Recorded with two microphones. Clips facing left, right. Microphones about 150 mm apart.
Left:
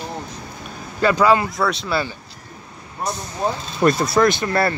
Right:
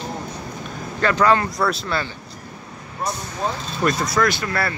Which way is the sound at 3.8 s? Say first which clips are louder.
Left 4 dB; 30° left (ahead or behind).